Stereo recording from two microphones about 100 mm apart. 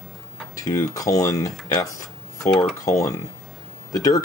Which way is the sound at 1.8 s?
35° left (ahead or behind).